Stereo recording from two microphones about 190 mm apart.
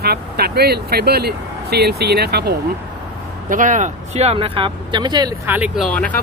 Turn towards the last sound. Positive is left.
turn(degrees=5)  # may be behind; listen again after turning